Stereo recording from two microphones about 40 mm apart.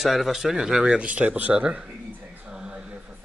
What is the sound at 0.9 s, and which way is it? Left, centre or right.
Speech, right.